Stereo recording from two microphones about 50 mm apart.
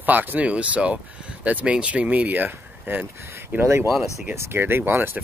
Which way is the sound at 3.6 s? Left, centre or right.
Right.